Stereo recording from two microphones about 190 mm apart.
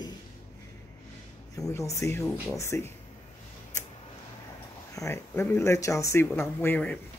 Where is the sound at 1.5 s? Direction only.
15° left (ahead or behind).